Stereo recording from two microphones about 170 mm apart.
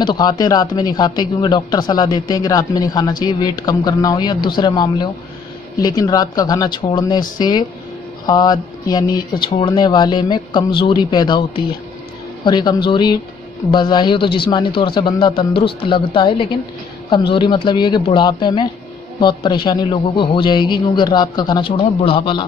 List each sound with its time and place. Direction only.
0.0 s speech: 25° left (ahead or behind)